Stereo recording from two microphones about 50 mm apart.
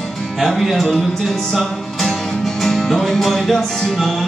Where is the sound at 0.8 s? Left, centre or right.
Centre.